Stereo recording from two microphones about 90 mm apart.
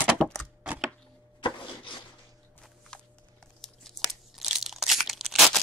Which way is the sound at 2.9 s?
10° left (ahead or behind).